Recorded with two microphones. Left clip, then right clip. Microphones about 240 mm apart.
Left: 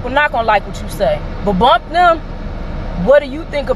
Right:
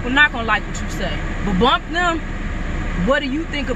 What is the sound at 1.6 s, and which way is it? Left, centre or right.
Speech, centre.